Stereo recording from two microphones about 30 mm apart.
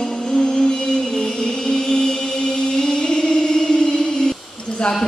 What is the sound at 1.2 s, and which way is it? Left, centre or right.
Chant, left.